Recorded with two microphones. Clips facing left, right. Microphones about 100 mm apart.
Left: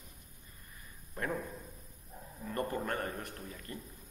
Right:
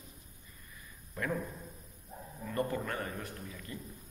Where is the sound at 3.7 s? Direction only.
40° left (ahead or behind).